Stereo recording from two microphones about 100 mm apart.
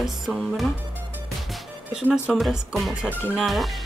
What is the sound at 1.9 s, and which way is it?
Speech, 15° right (ahead or behind).